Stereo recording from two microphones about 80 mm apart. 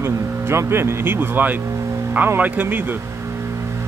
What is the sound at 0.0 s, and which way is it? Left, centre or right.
Speech, right.